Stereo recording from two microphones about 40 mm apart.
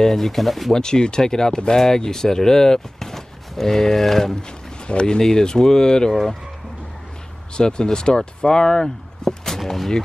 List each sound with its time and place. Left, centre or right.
0.0 s speech: centre
0.7 s speech: centre
4.8 s speech: left
7.5 s speech: left; by 9.8 s centre